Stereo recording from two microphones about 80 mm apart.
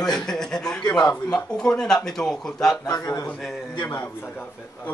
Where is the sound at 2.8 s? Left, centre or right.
Left.